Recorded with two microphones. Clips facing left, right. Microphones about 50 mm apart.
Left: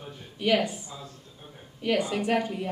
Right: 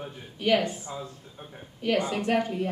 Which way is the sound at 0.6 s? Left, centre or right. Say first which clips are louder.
Right 3 dB; right.